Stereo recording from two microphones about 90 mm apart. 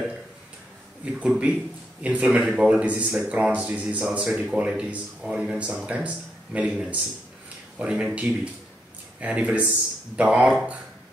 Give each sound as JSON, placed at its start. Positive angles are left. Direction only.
{"t": 1.0, "sound": "a man's voice", "side_deg": -15}